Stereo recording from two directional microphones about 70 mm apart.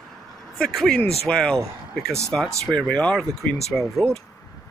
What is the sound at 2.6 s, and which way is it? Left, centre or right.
Speech, centre.